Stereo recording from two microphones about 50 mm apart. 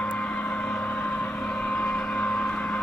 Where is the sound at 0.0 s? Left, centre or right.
Left.